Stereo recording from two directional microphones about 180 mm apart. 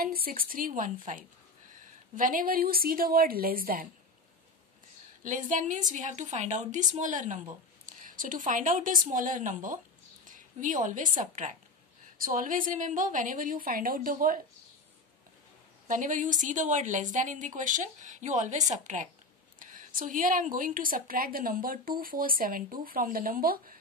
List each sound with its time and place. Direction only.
0.0 s a woman's voice: 55° right (ahead or behind)
5.2 s speech: 45° right (ahead or behind)
10.2 s a sound: 45° right (ahead or behind)
11.1 s speech: 45° right (ahead or behind)
15.9 s speech: 45° right (ahead or behind)